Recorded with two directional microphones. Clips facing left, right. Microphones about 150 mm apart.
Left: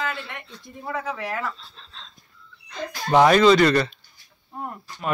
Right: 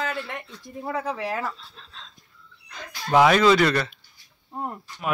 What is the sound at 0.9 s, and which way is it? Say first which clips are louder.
Speech: right 1 dB; 30° right (ahead or behind).